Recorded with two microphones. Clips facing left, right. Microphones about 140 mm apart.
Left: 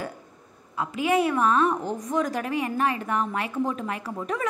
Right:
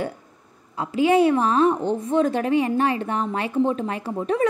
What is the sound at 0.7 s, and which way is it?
A woman's voice, 30° right (ahead or behind).